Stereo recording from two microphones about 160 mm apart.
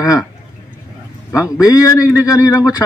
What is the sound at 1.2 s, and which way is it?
A man's voice, 20° left (ahead or behind).